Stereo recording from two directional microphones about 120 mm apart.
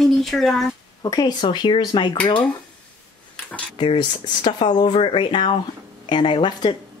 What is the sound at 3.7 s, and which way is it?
Speech, 45° left (ahead or behind).